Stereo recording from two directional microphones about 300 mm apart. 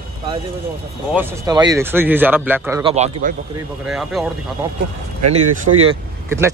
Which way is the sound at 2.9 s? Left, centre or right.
Right.